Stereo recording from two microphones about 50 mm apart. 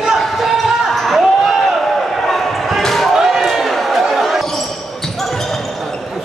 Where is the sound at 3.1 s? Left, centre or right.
Centre.